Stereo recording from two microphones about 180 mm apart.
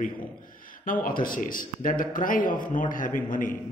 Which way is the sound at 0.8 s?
50° left (ahead or behind).